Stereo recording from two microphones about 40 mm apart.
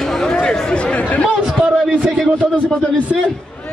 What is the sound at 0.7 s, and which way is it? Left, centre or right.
Chatter, left.